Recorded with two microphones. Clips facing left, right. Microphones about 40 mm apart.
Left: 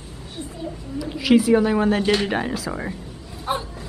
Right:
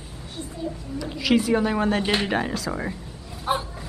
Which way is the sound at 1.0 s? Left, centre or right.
Centre.